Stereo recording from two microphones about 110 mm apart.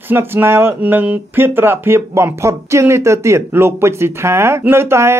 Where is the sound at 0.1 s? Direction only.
20° right (ahead or behind).